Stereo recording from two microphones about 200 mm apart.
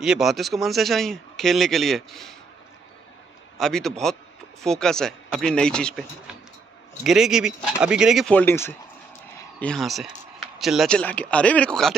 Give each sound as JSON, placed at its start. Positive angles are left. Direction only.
{"t": 0.0, "sound": "a man's voice", "side_deg": 0}
{"t": 3.5, "sound": "a man's voice", "side_deg": 0}